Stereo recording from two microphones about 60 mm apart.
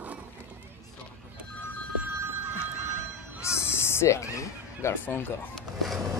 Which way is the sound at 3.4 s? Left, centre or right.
Left.